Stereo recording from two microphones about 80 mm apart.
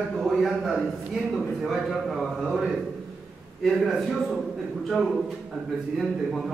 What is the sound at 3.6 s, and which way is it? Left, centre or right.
Speech, centre.